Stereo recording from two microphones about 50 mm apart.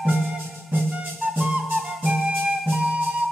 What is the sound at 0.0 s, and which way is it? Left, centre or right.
Music, centre.